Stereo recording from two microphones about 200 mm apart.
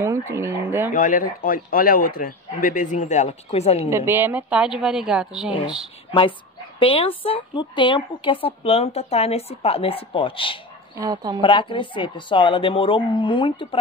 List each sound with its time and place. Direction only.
0.0 s speech: 15° right (ahead or behind)
0.9 s a man's voice: 40° left (ahead or behind)
3.9 s a woman's voice: 10° right (ahead or behind)
6.8 s a woman's voice: 25° left (ahead or behind)
11.0 s a woman's voice: 20° right (ahead or behind)
11.4 s a woman's voice: 25° left (ahead or behind)